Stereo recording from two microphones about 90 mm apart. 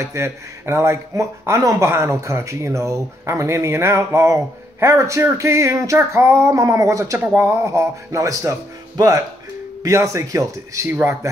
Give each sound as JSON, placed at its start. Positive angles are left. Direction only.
{"t": 0.0, "sound": "speech", "side_deg": -30}